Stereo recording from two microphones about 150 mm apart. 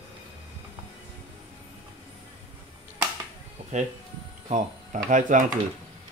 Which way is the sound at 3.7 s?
55° right (ahead or behind).